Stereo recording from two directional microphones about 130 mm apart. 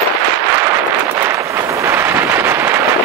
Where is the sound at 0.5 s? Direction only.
20° right (ahead or behind).